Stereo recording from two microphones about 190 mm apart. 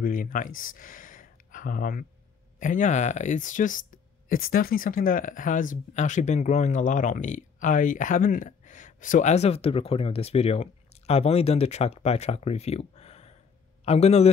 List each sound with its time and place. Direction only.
0.0 s speech: 45° left (ahead or behind)
0.6 s a sound: 45° left (ahead or behind)
2.6 s speech: 45° left (ahead or behind)